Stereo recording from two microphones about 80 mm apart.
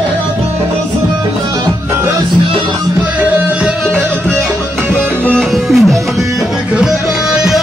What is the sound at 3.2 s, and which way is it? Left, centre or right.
Music, right.